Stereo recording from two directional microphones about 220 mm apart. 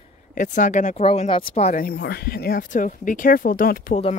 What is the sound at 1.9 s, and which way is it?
Speech, 45° left (ahead or behind).